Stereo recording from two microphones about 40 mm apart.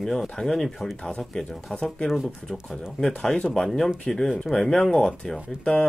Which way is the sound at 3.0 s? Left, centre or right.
Left.